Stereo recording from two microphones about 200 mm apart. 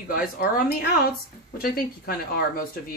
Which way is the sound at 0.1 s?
50° left (ahead or behind).